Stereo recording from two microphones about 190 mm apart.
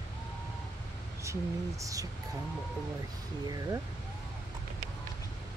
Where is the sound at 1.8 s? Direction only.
20° right (ahead or behind).